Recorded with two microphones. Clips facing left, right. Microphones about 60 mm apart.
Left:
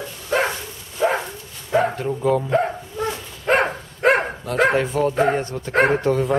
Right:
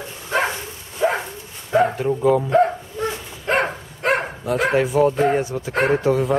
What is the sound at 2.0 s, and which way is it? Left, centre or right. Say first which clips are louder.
Speech: right 3 dB; centre.